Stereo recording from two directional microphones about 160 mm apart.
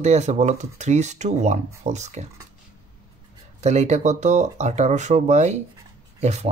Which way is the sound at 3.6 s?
45° right (ahead or behind).